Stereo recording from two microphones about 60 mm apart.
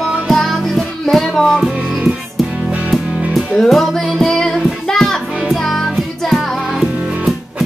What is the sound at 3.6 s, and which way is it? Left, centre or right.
Music, centre.